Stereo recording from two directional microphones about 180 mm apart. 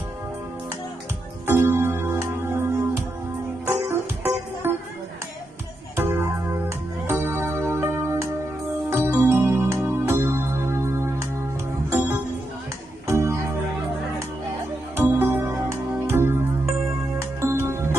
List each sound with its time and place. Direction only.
1.5 s keyboard: 15° right (ahead or behind)
3.6 s music: 10° right (ahead or behind)
5.9 s music: 15° right (ahead or behind)
15.0 s music: 10° right (ahead or behind)